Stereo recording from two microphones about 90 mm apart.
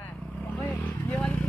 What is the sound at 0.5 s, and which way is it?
Vehicle, 20° left (ahead or behind).